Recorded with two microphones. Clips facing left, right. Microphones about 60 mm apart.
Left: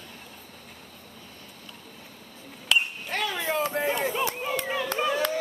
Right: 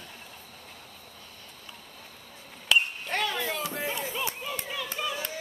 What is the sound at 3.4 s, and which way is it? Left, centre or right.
Chatter, left.